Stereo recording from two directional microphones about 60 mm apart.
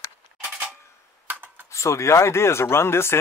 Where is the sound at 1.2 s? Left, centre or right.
Right.